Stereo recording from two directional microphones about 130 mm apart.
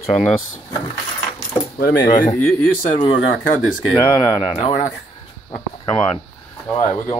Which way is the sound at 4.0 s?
35° left (ahead or behind).